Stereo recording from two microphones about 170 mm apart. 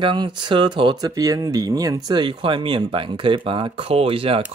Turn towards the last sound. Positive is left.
turn(degrees=-35)  # may be behind; listen again after turning